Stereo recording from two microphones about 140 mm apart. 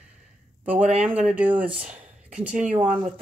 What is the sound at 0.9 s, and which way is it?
Speech, 5° right (ahead or behind).